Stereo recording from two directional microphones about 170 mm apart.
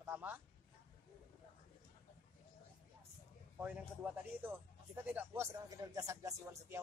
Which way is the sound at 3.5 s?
10° right (ahead or behind).